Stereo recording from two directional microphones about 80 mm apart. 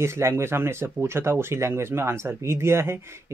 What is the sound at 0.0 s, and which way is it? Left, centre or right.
Speech, right.